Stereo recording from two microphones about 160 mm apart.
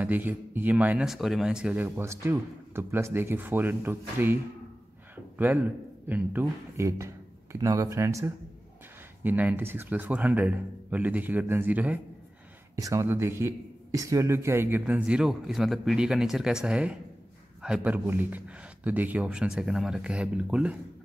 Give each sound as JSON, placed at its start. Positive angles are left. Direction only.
{"t": 0.0, "sound": "speech", "side_deg": -10}